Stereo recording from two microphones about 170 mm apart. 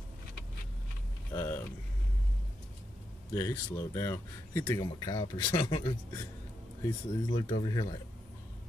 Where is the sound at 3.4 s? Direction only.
15° left (ahead or behind).